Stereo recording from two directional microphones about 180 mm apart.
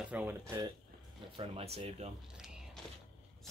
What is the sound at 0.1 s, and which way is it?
Speech, 10° right (ahead or behind).